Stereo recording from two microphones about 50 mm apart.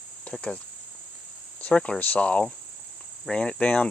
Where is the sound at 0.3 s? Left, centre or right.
Centre.